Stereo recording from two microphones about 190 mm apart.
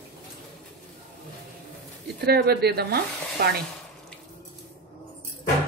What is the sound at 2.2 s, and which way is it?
Speech, 55° right (ahead or behind).